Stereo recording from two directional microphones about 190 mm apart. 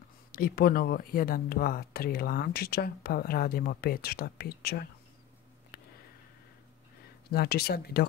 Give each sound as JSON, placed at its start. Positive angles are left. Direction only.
{"t": 0.3, "sound": "speech", "side_deg": 50}
{"t": 7.2, "sound": "speech", "side_deg": 55}